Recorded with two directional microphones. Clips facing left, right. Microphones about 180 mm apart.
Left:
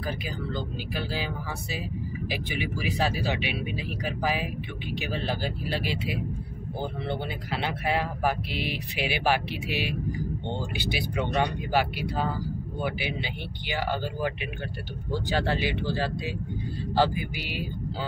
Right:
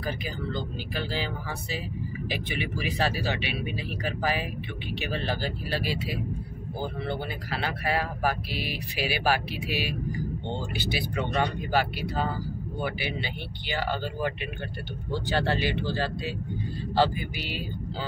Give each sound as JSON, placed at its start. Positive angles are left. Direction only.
{"t": 0.9, "sound": "speech", "side_deg": 10}
{"t": 4.2, "sound": "speech", "side_deg": 10}